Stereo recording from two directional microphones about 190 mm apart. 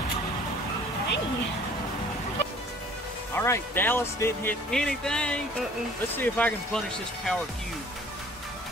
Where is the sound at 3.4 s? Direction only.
10° left (ahead or behind).